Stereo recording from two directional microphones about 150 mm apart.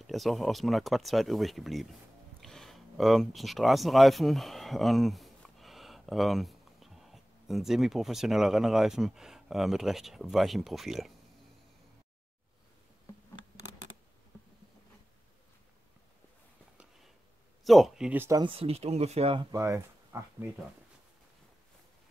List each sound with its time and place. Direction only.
0.0 s speech: centre (ahead or behind)
16.7 s a sound: 5° right (ahead or behind)
17.6 s speech: centre (ahead or behind)
18.4 s speech: 40° right (ahead or behind)
19.5 s speech: 20° right (ahead or behind)